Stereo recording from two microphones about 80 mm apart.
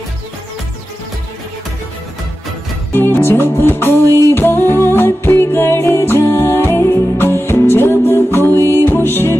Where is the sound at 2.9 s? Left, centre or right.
Left.